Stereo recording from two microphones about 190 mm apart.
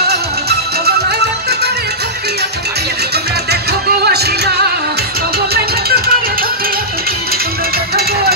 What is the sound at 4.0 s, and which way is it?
Music, 60° right (ahead or behind).